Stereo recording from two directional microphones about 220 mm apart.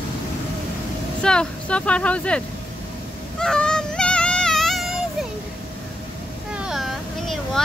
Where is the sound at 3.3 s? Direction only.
5° left (ahead or behind).